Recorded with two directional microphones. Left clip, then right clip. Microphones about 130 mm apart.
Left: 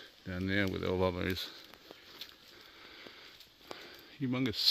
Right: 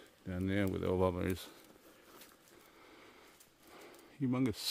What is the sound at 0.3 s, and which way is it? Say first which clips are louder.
Speech: left 3 dB; 10° right (ahead or behind).